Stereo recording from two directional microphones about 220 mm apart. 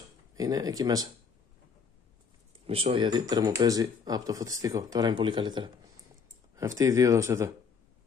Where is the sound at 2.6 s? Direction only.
25° right (ahead or behind).